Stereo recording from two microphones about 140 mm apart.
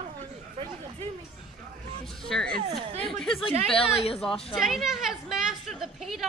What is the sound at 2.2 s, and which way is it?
A woman's voice, 5° left (ahead or behind).